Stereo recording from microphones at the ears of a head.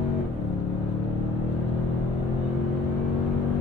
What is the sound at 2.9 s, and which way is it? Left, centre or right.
Vehicle, left.